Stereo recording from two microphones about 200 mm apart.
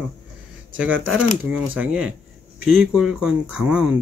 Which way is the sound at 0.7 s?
75° right (ahead or behind).